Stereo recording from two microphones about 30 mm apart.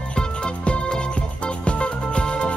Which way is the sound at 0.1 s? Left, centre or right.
Left.